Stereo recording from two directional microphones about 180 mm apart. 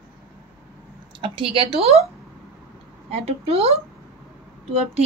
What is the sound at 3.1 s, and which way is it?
Speech, 35° right (ahead or behind).